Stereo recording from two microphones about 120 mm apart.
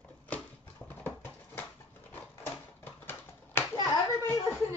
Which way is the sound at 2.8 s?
15° left (ahead or behind).